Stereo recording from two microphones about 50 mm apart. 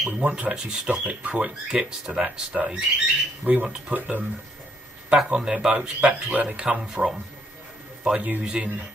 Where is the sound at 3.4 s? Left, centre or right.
Right.